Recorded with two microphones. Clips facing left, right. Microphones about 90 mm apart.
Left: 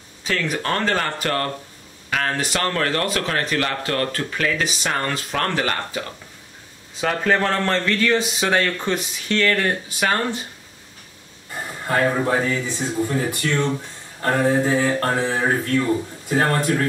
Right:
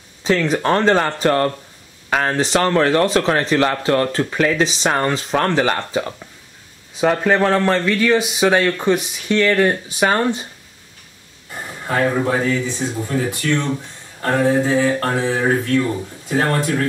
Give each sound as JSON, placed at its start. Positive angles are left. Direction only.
{"t": 0.2, "sound": "speech", "side_deg": -30}
{"t": 7.0, "sound": "speech", "side_deg": -15}
{"t": 11.8, "sound": "a man's voice", "side_deg": 0}
{"t": 12.7, "sound": "a sound", "side_deg": 10}